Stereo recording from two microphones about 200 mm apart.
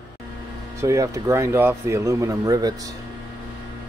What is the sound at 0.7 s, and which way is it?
Speech, 15° right (ahead or behind).